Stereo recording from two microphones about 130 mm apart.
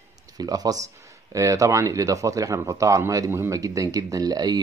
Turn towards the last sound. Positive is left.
turn(degrees=-30)  # may be behind; listen again after turning